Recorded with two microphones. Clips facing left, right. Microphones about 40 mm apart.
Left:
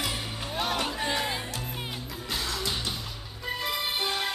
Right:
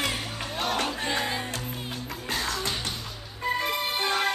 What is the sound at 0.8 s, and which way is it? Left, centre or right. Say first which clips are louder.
Crowd: right 1 dB; centre.